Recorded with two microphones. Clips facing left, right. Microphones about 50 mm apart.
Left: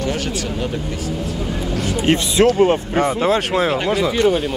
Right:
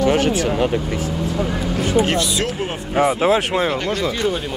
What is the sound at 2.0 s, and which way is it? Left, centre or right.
Speech, left.